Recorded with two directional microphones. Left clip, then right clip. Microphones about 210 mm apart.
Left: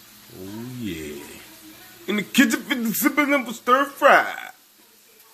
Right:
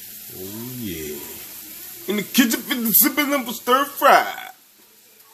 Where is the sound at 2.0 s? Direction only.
5° right (ahead or behind).